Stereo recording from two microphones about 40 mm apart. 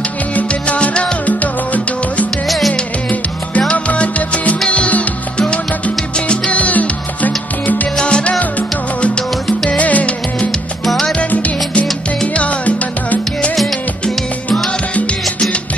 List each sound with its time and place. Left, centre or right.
0.4 s music: left
2.4 s music: centre
3.7 s music: left
6.1 s music: left
8.0 s music: left
10.9 s music: centre
11.2 s salsa music: left
12.4 s music: left